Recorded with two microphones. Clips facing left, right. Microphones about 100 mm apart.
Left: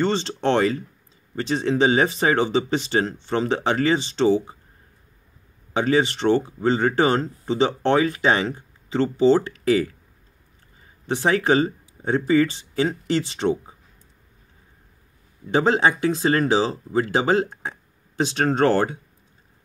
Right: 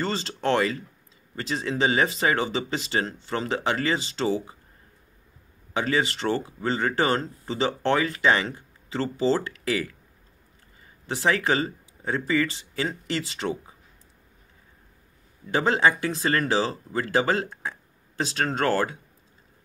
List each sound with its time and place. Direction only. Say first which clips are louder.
0.0 s speech: left 5 dB; 25° left (ahead or behind)
5.7 s speech: left 5 dB; 25° left (ahead or behind)
11.1 s speech: left 4 dB; 25° left (ahead or behind)
15.5 s speech: left 3 dB; 25° left (ahead or behind)